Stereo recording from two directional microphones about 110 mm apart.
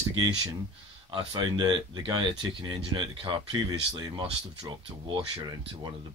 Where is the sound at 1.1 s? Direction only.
40° right (ahead or behind).